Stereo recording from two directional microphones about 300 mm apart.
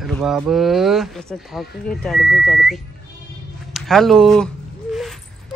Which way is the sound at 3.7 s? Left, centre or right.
Centre.